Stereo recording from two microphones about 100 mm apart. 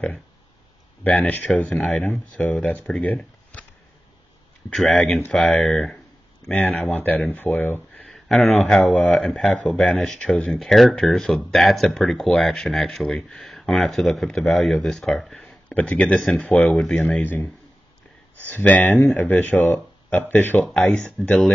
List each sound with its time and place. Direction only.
1.0 s speech: 15° left (ahead or behind)
4.7 s speech: 5° left (ahead or behind)
5.0 s speech: 15° left (ahead or behind)
5.3 s speech: 5° left (ahead or behind)
6.5 s speech: 15° left (ahead or behind)
8.0 s speech: 5° left (ahead or behind)
18.5 s speech: 15° left (ahead or behind)